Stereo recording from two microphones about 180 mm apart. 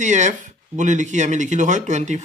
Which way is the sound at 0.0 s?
40° right (ahead or behind).